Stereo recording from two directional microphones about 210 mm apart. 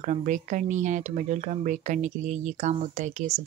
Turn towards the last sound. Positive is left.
turn(degrees=-35)  # may be behind; listen again after turning